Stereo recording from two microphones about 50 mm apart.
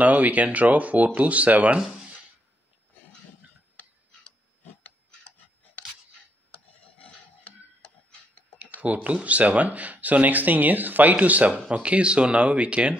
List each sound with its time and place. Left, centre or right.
0.0 s speech: right
8.8 s speech: right